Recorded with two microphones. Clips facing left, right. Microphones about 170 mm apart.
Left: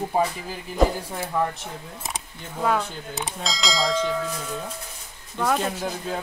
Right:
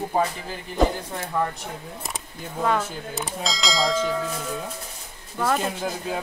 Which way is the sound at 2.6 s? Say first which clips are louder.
Even; centre (ahead or behind).